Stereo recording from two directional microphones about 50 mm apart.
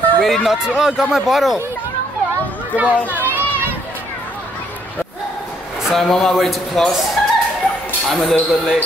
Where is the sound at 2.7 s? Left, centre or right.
Right.